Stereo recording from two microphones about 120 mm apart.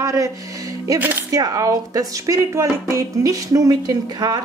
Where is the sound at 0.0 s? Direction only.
30° right (ahead or behind).